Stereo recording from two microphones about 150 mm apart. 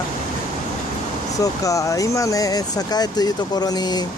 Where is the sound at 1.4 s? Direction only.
20° left (ahead or behind).